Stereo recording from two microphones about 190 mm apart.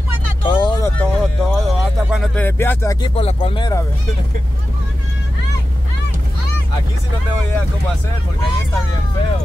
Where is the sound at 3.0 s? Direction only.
30° left (ahead or behind).